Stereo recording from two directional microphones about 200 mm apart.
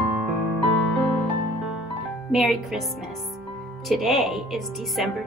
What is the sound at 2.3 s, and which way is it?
Speech, centre (ahead or behind).